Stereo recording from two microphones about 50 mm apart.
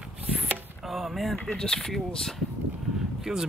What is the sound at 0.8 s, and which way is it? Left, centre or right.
Speech, centre.